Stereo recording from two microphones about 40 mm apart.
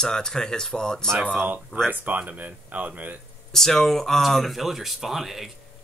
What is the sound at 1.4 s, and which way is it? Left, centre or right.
Speech, right.